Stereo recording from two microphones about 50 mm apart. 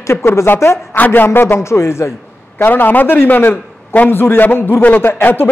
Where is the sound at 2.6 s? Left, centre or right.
Left.